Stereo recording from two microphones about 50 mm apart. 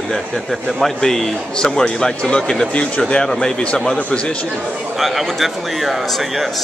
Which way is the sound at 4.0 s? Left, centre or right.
Left.